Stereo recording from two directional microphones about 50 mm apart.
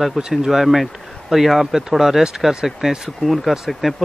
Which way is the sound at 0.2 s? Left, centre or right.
Centre.